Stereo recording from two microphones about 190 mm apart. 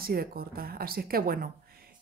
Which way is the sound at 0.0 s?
50° right (ahead or behind).